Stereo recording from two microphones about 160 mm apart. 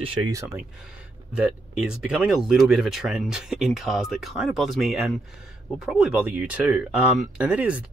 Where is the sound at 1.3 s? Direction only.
5° right (ahead or behind).